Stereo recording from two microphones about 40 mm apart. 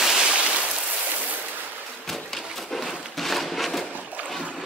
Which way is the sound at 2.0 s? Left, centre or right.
Centre.